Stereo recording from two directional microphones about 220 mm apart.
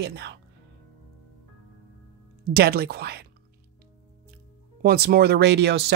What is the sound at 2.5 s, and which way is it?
Speech, 45° right (ahead or behind).